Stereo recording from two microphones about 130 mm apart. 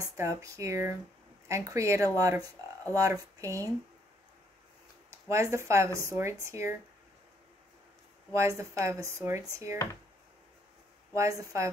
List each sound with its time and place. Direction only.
0.0 s speech: 25° right (ahead or behind)
5.1 s speech: 25° right (ahead or behind)
8.3 s speech: 25° right (ahead or behind)
11.1 s speech: 25° right (ahead or behind)